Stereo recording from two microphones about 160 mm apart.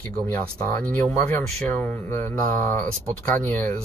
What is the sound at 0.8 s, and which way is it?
Speech, 10° left (ahead or behind).